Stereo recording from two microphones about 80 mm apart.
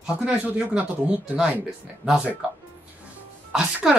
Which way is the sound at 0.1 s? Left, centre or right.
Centre.